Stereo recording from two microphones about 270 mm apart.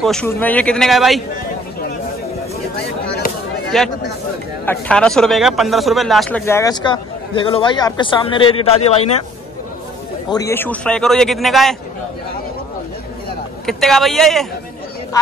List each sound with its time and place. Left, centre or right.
0.0 s speech: centre
3.7 s speech: centre; by 9.0 s left
10.3 s speech: centre
13.7 s speech: centre